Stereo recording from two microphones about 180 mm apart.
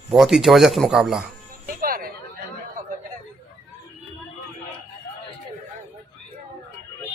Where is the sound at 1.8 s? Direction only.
55° right (ahead or behind).